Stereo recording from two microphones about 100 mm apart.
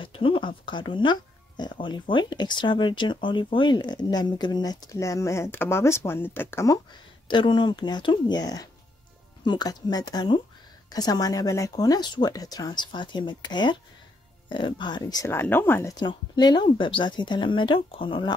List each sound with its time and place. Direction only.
0.0 s speech: 60° left (ahead or behind); by 6.8 s 30° left (ahead or behind)
6.9 s speech: 50° left (ahead or behind)
15.4 s speech: 20° left (ahead or behind)
15.9 s speech: 45° left (ahead or behind)
16.6 s speech: 55° left (ahead or behind)